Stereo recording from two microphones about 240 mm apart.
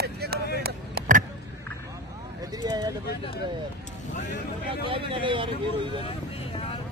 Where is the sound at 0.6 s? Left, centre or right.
Right.